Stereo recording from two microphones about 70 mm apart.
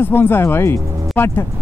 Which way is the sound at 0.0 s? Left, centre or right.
Left.